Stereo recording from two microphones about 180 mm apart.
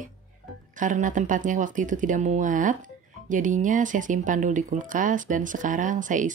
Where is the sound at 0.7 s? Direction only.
45° right (ahead or behind).